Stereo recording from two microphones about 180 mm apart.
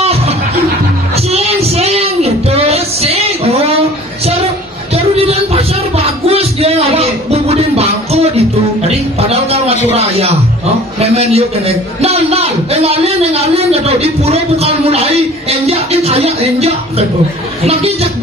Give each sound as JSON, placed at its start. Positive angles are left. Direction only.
{"t": 0.0, "sound": "music", "side_deg": -35}
{"t": 4.9, "sound": "music", "side_deg": -35}
{"t": 11.0, "sound": "a man's voice", "side_deg": -35}